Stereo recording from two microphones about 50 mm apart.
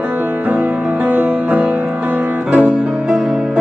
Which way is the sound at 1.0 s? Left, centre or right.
Right.